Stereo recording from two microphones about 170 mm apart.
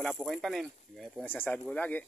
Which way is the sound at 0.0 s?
Centre (ahead or behind).